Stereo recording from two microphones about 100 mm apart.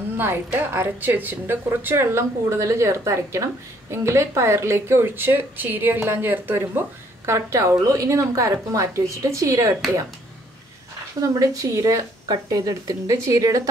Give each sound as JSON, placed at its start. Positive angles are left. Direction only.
{"t": 0.2, "sound": "a woman's voice", "side_deg": -20}
{"t": 11.1, "sound": "a woman's voice", "side_deg": -35}